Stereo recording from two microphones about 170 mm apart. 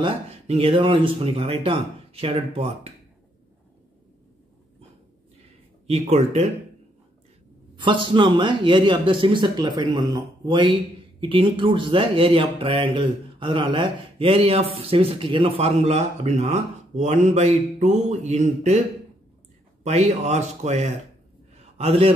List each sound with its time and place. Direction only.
0.0 s speech: 35° right (ahead or behind)
5.9 s speech: 40° right (ahead or behind)
7.7 s speech: 30° right (ahead or behind)
19.8 s speech: 40° right (ahead or behind)